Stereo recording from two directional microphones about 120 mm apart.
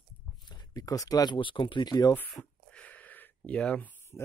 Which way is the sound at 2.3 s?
10° left (ahead or behind).